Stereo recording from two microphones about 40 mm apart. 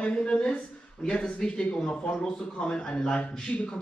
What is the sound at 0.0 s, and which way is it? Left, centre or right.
A man's voice, left.